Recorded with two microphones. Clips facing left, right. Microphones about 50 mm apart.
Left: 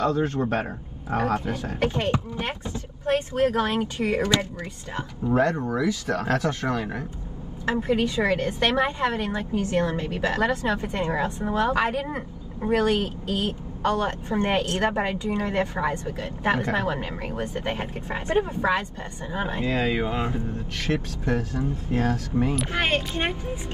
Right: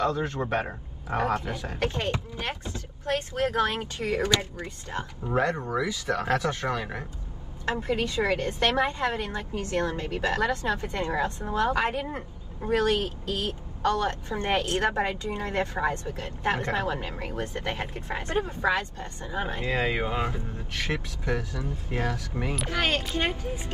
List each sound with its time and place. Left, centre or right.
0.1 s a woman's voice: left
0.4 s speech: right
1.4 s a woman's voice: left
5.2 s speech: centre
5.6 s speech: centre
7.6 s a woman's voice: left
19.6 s speech: right
20.9 s speech: centre
21.3 s a woman's voice: left
22.3 s speech: right
22.7 s a woman's voice: left